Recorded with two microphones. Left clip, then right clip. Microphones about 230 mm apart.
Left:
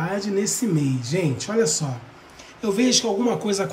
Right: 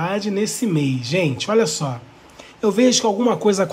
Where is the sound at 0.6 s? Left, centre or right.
Centre.